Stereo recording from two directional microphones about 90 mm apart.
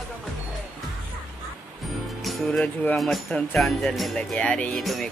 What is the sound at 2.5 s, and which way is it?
Speech, 10° left (ahead or behind).